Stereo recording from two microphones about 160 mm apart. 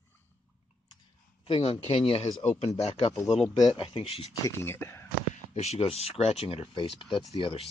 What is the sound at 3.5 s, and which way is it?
Speech, 25° left (ahead or behind).